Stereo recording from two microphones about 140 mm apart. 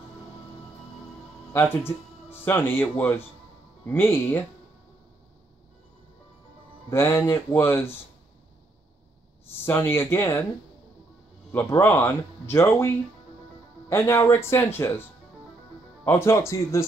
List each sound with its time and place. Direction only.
2.4 s speech: 15° left (ahead or behind)
6.9 s speech: 15° left (ahead or behind)
9.7 s speech: 15° left (ahead or behind)
11.5 s speech: 15° left (ahead or behind)
16.1 s speech: 20° left (ahead or behind)